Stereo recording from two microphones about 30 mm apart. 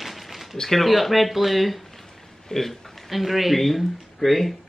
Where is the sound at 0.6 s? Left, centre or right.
Centre.